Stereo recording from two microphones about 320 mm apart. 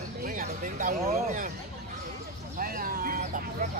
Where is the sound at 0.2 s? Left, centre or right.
Right.